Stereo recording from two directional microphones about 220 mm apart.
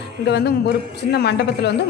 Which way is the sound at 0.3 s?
45° left (ahead or behind).